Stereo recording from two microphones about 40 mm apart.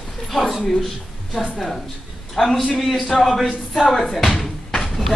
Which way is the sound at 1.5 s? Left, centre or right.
Centre.